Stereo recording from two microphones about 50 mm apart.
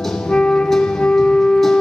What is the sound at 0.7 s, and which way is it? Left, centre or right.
Wind instrument, centre.